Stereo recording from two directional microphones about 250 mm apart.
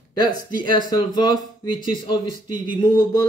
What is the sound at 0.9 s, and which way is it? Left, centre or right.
Speech, centre.